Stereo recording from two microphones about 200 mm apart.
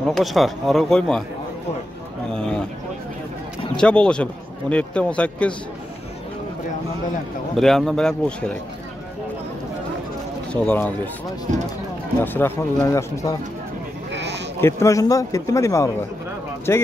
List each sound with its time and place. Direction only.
0.0 s a man's voice: centre (ahead or behind)
3.7 s a man's voice: 5° left (ahead or behind)
7.5 s a man's voice: centre (ahead or behind)
10.5 s a man's voice: 5° left (ahead or behind)
12.2 s a man's voice: 10° left (ahead or behind)
14.1 s sheep: 60° right (ahead or behind)
14.6 s a man's voice: 15° left (ahead or behind)